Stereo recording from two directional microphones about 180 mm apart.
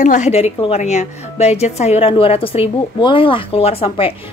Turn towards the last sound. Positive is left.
turn(degrees=30)  # may be behind; listen again after turning